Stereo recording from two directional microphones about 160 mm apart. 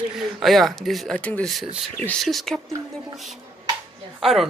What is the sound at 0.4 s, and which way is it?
Speech, centre (ahead or behind).